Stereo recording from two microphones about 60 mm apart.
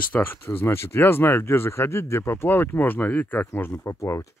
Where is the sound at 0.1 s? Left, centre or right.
Left.